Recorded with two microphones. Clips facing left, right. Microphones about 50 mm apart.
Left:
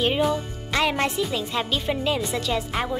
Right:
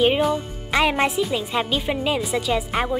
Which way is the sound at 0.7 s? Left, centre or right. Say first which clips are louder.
Right 3 dB; centre.